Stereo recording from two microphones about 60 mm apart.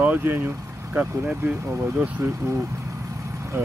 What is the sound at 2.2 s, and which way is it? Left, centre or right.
Speech, right.